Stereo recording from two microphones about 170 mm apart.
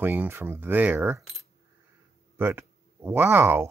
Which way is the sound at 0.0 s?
10° right (ahead or behind).